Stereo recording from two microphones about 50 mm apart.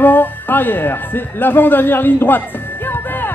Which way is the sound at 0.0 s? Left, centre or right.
Left.